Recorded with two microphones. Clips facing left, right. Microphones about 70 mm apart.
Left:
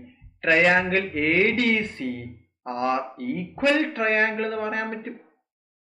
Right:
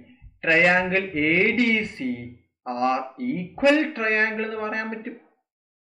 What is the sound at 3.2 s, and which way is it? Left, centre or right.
Speech, left.